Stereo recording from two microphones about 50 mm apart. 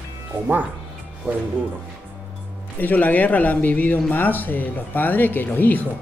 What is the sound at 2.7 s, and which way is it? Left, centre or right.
Speech, left.